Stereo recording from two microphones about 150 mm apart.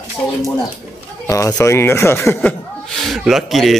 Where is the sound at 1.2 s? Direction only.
20° left (ahead or behind).